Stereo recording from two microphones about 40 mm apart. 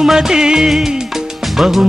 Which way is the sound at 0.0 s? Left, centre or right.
Centre.